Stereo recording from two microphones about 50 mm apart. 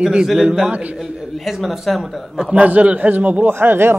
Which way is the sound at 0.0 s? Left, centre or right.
Centre.